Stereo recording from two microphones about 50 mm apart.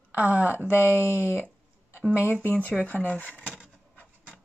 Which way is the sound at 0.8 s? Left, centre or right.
Left.